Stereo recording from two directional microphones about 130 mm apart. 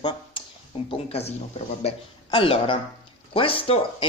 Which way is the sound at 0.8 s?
50° left (ahead or behind).